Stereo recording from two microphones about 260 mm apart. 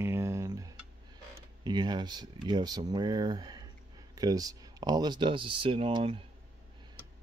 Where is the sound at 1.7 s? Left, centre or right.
Centre.